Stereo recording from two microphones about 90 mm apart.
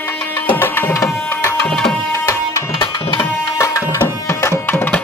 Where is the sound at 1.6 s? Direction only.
10° left (ahead or behind).